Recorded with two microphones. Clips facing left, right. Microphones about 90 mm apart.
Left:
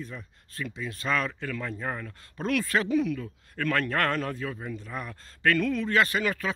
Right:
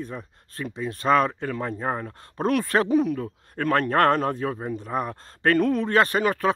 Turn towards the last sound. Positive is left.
turn(degrees=-40)  # may be behind; listen again after turning